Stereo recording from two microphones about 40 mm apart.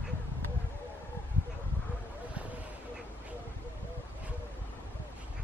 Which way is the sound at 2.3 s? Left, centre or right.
Right.